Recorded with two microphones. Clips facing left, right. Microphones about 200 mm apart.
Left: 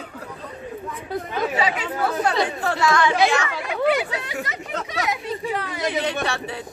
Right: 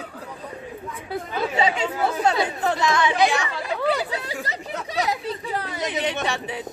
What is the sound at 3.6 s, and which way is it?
Speech, 35° right (ahead or behind).